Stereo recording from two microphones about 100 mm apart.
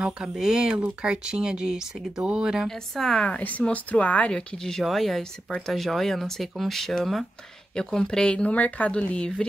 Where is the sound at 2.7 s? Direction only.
5° left (ahead or behind).